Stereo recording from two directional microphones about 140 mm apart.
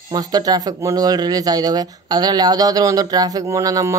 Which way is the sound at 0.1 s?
30° right (ahead or behind).